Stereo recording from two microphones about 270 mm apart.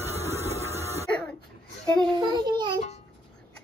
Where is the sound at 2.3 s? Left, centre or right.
Centre.